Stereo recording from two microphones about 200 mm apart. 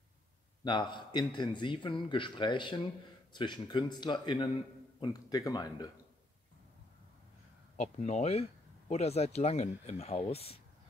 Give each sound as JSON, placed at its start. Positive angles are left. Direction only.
{"t": 0.7, "sound": "speech", "side_deg": 25}
{"t": 7.7, "sound": "speech", "side_deg": 35}